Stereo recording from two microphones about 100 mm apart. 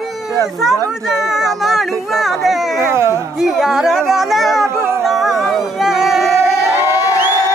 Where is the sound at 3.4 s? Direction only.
5° right (ahead or behind).